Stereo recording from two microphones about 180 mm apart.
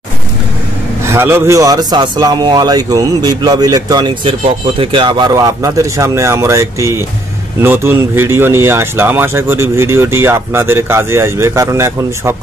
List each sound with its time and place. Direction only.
1.0 s a man's voice: 15° right (ahead or behind)